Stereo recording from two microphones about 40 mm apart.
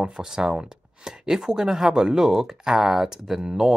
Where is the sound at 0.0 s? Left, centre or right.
Centre.